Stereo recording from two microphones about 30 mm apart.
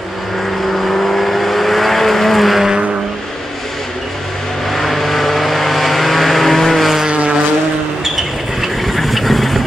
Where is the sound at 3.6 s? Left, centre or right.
Centre.